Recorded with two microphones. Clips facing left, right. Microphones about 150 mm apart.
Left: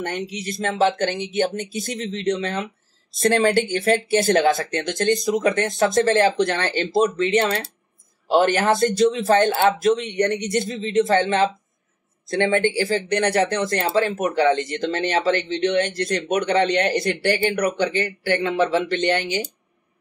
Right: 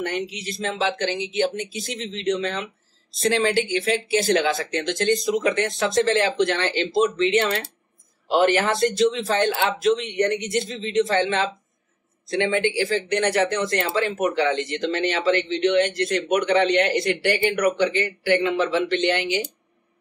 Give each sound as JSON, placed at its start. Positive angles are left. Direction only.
{"t": 0.0, "sound": "speech", "side_deg": 45}